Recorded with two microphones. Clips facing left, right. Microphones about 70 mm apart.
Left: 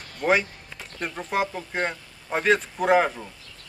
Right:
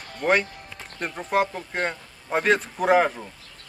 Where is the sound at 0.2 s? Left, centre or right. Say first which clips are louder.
Even; centre.